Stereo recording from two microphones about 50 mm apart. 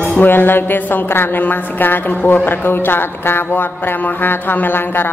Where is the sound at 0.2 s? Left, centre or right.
Left.